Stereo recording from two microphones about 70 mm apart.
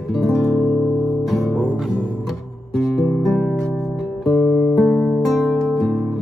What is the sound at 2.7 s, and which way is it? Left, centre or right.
Guitar, centre.